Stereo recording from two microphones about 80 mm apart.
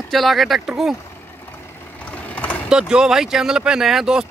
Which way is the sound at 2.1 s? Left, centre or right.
Centre.